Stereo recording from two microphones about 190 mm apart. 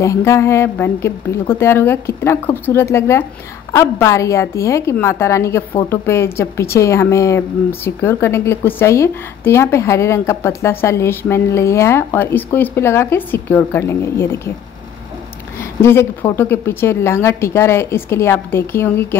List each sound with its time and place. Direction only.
0.0 s speech: 15° left (ahead or behind)
15.8 s speech: 10° left (ahead or behind)